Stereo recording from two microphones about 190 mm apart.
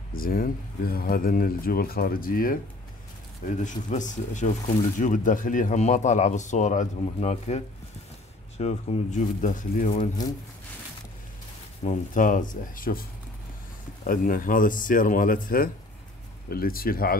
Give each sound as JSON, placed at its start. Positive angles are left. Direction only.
{"t": 0.1, "sound": "speech", "side_deg": 50}
{"t": 11.8, "sound": "speech", "side_deg": 40}
{"t": 14.0, "sound": "speech", "side_deg": 45}